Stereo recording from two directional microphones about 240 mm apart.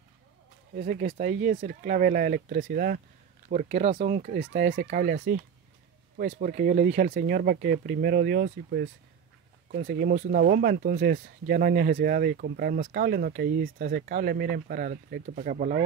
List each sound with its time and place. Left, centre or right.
0.7 s speech: right